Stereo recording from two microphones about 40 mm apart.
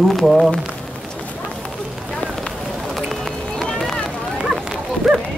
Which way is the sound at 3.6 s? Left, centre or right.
Centre.